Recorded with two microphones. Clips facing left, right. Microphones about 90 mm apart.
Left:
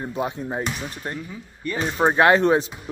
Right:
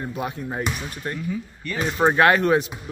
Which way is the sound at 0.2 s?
25° left (ahead or behind).